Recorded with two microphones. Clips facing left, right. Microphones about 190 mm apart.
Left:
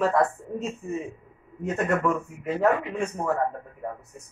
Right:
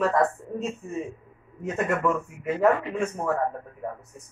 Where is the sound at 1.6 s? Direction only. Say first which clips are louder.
Left 1 dB; 5° right (ahead or behind).